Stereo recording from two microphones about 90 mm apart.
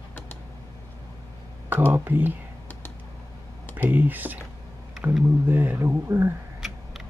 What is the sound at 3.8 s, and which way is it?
Speech, 20° right (ahead or behind).